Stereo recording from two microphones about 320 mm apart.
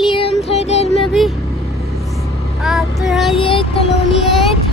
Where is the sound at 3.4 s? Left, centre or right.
Centre.